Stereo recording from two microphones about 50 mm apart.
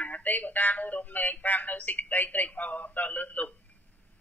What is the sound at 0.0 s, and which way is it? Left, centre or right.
Speech, left.